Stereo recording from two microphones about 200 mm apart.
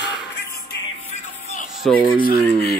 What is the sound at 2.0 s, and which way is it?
Speech, 45° left (ahead or behind).